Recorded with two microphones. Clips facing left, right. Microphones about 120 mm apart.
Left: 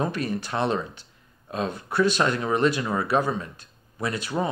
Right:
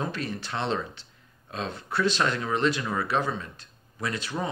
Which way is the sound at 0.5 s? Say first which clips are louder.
Left 5 dB; 30° left (ahead or behind).